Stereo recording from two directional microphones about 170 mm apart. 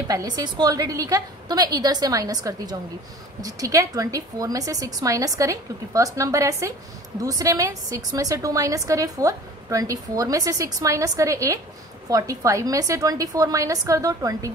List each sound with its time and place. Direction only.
0.4 s a woman's voice: 25° right (ahead or behind)